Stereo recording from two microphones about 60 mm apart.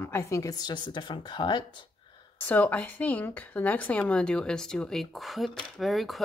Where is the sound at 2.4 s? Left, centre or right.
Left.